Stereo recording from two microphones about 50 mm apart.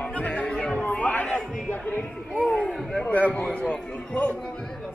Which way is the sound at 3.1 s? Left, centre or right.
Left.